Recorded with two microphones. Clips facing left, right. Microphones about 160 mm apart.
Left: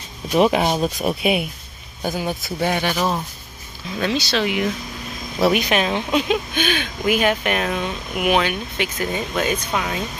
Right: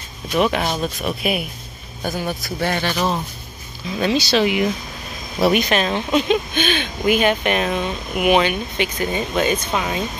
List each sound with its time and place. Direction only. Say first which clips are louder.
0.4 s speech: left 3 dB; 20° left (ahead or behind)
4.0 s speech: right 4 dB; 5° right (ahead or behind)
5.4 s speech: right 1 dB; 5° left (ahead or behind)